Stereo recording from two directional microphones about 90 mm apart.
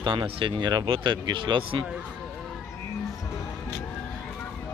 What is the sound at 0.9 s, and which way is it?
Speech, 60° right (ahead or behind).